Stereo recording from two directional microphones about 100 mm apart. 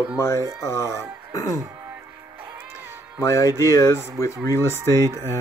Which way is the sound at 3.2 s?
30° left (ahead or behind).